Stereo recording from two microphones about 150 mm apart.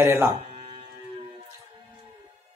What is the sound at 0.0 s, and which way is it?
Speech, 15° right (ahead or behind).